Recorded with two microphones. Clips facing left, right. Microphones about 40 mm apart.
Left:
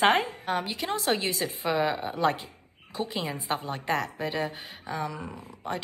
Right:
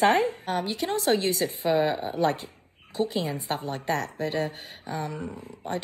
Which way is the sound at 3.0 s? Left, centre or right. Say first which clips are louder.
Right 4 dB; left.